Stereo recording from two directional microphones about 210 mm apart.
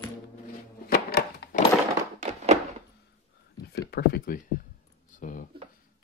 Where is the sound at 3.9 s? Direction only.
45° left (ahead or behind).